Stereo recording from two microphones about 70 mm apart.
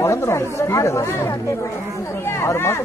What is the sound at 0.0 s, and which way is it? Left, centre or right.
Speech, left.